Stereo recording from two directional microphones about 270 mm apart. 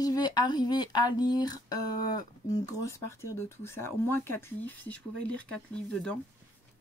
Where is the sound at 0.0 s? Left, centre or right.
Centre.